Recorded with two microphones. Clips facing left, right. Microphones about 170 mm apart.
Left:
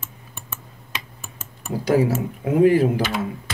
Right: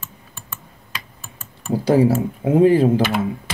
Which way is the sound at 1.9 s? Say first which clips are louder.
Right 3 dB; 30° right (ahead or behind).